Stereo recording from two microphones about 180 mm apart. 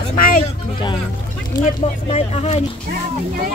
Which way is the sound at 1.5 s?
40° left (ahead or behind).